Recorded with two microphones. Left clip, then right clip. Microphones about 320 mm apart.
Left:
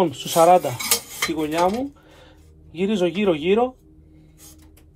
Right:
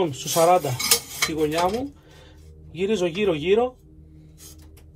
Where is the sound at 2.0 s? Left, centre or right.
Left.